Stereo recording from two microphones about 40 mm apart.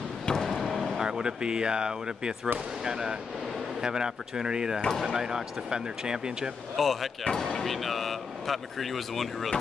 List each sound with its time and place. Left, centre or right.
0.5 s vehicle: centre
1.0 s speech: right
6.8 s speech: centre
7.3 s speech: centre
7.6 s speech: centre